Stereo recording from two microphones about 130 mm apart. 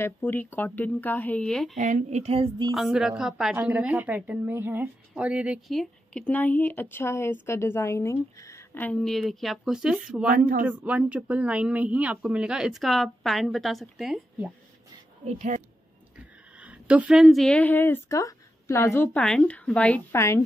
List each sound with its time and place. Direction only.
0.0 s speech: 15° left (ahead or behind)
1.8 s a woman's voice: 70° right (ahead or behind); by 2.5 s 50° right (ahead or behind)
2.7 s speech: centre (ahead or behind)
5.7 s a woman's voice: 5° left (ahead or behind)
9.0 s speech: centre (ahead or behind)
15.2 s speech: 70° right (ahead or behind)
16.5 s a woman's voice: 10° right (ahead or behind); by 19.0 s 20° left (ahead or behind)
19.1 s speech: 5° left (ahead or behind)
20.1 s a woman's voice: 20° left (ahead or behind)